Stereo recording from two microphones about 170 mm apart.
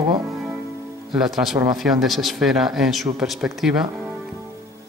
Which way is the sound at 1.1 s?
Centre (ahead or behind).